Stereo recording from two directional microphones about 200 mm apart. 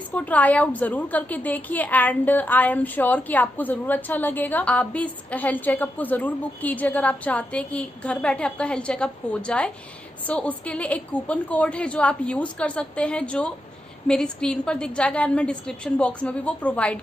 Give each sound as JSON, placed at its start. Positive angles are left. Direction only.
{"t": 0.1, "sound": "a woman's voice", "side_deg": 5}